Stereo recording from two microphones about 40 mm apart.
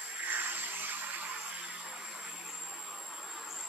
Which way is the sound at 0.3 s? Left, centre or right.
Right.